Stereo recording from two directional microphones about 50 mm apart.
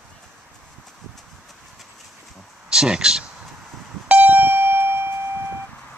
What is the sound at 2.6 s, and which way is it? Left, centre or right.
Speech, centre.